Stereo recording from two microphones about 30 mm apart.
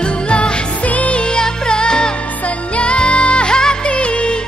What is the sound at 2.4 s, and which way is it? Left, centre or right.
Music, left.